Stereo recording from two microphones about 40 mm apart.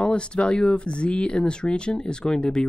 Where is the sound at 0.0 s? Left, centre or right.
Left.